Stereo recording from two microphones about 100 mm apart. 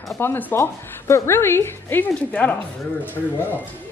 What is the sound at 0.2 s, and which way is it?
A woman's voice, 20° left (ahead or behind).